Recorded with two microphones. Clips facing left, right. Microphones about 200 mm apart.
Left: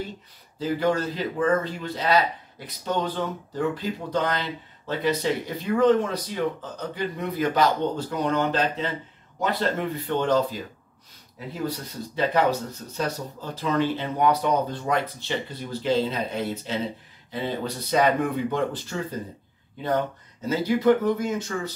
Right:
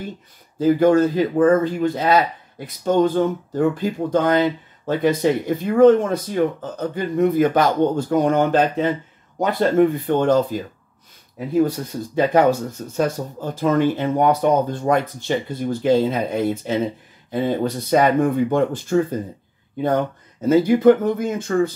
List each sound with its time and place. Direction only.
0.6 s speech: 50° right (ahead or behind)